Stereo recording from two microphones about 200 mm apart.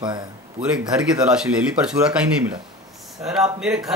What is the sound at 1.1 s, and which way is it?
A man's voice, 5° right (ahead or behind).